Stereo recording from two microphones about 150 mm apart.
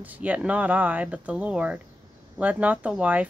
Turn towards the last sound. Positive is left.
turn(degrees=-10)  # may be behind; listen again after turning